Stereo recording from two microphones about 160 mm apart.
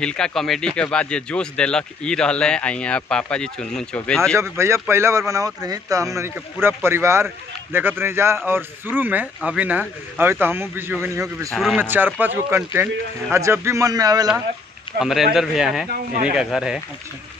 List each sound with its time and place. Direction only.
0.0 s speech: 5° left (ahead or behind)
4.4 s speech: 15° right (ahead or behind)
11.5 s speech: centre (ahead or behind)
11.8 s speech: 10° right (ahead or behind)
15.0 s speech: centre (ahead or behind)